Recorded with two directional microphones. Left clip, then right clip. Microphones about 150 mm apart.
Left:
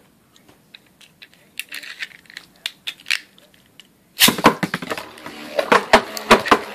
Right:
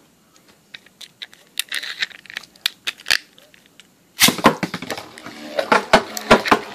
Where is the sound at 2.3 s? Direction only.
30° right (ahead or behind).